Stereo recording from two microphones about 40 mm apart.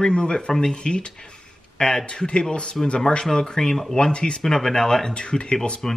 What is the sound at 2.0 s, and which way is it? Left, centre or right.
Speech, left.